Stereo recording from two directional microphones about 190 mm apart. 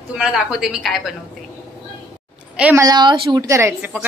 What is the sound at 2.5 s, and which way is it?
A woman's voice, 10° right (ahead or behind).